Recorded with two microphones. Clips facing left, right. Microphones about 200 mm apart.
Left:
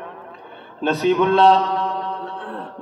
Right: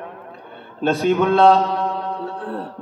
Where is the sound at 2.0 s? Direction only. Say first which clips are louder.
Right 2 dB; 45° right (ahead or behind).